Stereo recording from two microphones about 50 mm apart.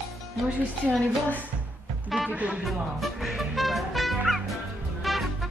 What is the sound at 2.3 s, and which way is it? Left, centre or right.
Speech, right.